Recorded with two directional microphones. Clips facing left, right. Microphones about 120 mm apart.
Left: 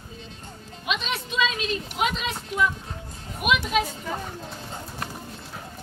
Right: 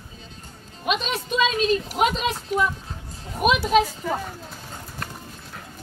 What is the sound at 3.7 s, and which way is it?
Speech, 35° right (ahead or behind).